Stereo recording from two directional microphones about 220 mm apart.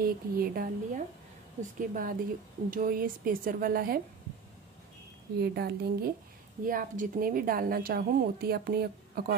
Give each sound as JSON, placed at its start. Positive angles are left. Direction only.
{"t": 0.0, "sound": "a woman's voice", "side_deg": -40}
{"t": 5.4, "sound": "a woman's voice", "side_deg": -45}